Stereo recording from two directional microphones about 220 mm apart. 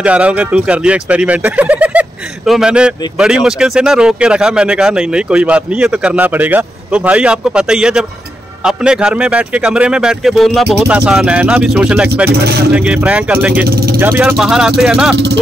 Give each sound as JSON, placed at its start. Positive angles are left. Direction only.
{"t": 0.0, "sound": "speech", "side_deg": -5}
{"t": 12.3, "sound": "speech", "side_deg": -45}
{"t": 12.7, "sound": "speech", "side_deg": -5}
{"t": 13.7, "sound": "vehicle", "side_deg": -45}
{"t": 13.9, "sound": "speech", "side_deg": -10}